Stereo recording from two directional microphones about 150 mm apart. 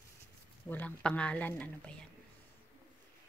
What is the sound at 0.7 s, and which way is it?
Speech, 10° left (ahead or behind).